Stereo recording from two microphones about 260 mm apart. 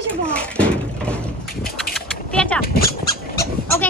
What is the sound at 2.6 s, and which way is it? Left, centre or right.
Speech, left.